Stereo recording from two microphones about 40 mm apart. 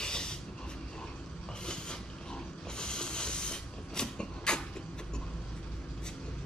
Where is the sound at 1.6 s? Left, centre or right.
Centre.